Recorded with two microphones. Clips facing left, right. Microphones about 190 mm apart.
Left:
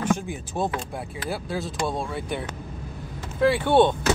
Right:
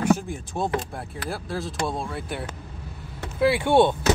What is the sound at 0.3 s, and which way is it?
Speech, centre (ahead or behind).